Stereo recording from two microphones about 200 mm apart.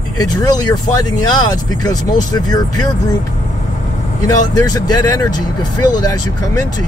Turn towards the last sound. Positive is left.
turn(degrees=20)  # may be behind; listen again after turning